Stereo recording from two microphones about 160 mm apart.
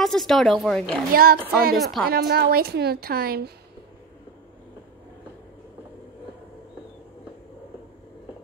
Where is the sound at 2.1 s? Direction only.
80° right.